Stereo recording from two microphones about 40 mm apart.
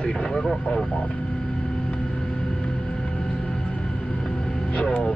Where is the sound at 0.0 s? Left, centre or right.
Centre.